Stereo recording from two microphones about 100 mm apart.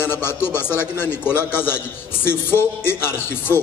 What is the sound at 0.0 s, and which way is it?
A man's voice, 20° left (ahead or behind).